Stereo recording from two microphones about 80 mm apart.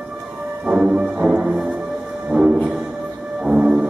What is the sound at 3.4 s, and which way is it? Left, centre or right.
Music, centre.